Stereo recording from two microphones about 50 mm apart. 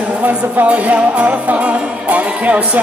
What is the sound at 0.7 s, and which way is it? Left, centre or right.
Music, right.